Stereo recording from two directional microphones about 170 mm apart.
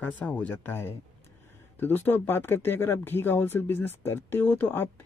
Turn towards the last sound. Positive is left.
turn(degrees=10)  # may be behind; listen again after turning